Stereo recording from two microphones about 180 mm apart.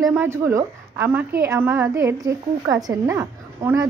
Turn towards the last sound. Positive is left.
turn(degrees=-10)  # may be behind; listen again after turning